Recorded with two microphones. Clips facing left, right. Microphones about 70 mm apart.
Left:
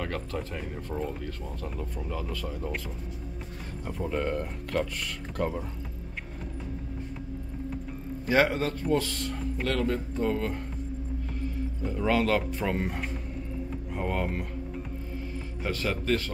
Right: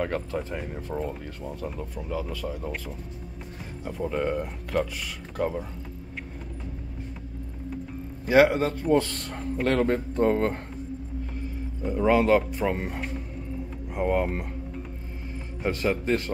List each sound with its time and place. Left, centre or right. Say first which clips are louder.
0.0 s speech: right 5 dB; centre
8.3 s speech: right 5 dB; centre
8.9 s speech: right 4 dB; right
11.8 s speech: right 5 dB; centre
13.9 s speech: right 6 dB; centre
15.6 s a man's voice: right 5 dB; right